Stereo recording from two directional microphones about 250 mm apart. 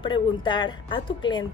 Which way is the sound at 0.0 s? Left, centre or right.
Centre.